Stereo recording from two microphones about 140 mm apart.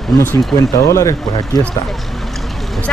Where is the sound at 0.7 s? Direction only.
20° left (ahead or behind).